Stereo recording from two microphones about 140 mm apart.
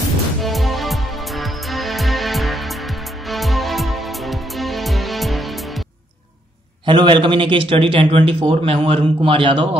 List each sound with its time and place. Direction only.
0.4 s music: centre (ahead or behind)
6.9 s a man's voice: 35° right (ahead or behind)